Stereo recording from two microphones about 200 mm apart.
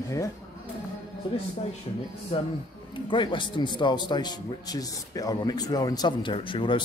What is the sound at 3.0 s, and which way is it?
Speech, 25° left (ahead or behind).